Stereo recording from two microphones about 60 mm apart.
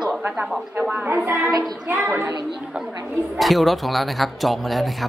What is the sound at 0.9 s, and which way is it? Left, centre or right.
Speech, right.